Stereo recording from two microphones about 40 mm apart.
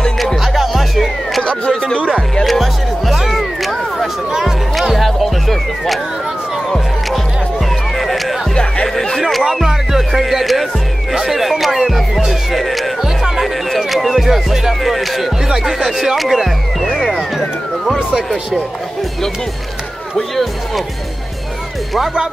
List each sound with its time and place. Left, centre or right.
0.4 s music: centre
1.4 s a sound: left
1.7 s speech: centre
2.4 s music: centre
8.0 s music: centre
15.4 s speech: centre
16.8 s music: centre
18.1 s speech: centre
20.2 s speech: centre